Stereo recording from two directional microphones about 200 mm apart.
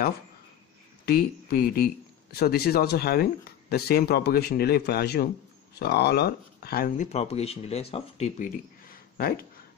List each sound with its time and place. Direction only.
1.0 s speech: 50° left (ahead or behind)
7.1 s speech: 30° left (ahead or behind)
8.8 s a sound: 45° left (ahead or behind)